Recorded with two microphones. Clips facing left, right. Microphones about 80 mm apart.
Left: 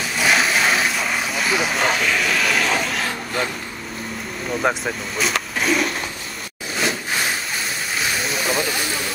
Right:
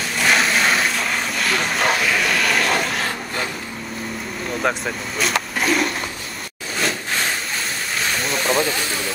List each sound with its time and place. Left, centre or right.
0.2 s vehicle: centre
4.6 s speech: centre
6.8 s a sound: centre